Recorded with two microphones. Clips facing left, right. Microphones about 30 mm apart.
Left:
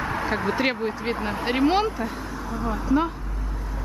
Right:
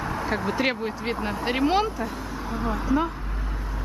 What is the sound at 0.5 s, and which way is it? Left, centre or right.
Speech, centre.